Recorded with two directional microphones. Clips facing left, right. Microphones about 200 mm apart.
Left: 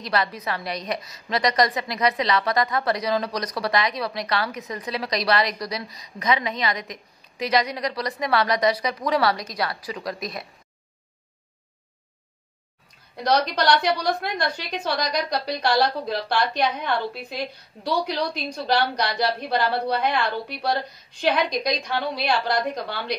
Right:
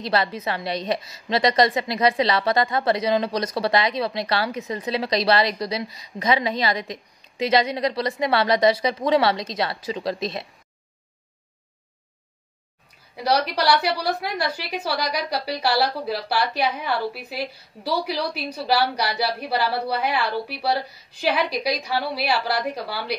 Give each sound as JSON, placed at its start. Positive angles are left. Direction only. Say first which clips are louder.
{"t": 0.0, "sound": "a woman's voice", "louder": "right 2 dB", "side_deg": -30}
{"t": 13.1, "sound": "a woman's voice", "louder": "even", "side_deg": -5}